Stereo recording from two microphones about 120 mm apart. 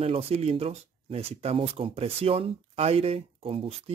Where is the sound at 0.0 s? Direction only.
55° right (ahead or behind).